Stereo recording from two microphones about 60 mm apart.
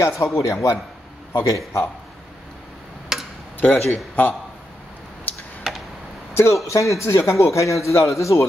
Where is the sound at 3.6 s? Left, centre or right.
Left.